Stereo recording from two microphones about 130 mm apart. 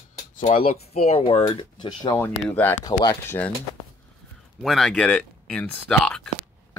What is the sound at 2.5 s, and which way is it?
Speech, 15° left (ahead or behind).